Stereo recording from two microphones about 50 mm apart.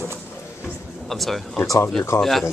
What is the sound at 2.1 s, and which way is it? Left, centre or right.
Speech, left.